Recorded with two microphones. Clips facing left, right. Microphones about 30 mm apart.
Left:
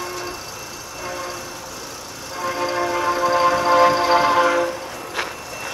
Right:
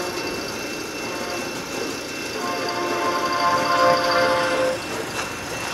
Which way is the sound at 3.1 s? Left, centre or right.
Centre.